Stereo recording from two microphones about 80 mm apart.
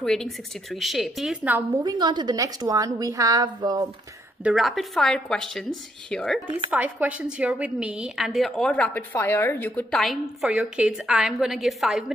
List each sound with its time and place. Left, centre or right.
0.0 s a woman's voice: centre
1.3 s a woman's voice: centre
1.8 s a woman's voice: right
2.3 s a woman's voice: right
4.6 s a woman's voice: centre
6.7 s a woman's voice: centre; by 9.8 s left
9.8 s a woman's voice: centre